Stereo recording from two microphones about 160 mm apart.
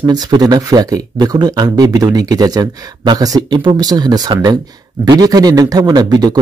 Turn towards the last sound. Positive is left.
turn(degrees=-25)  # may be behind; listen again after turning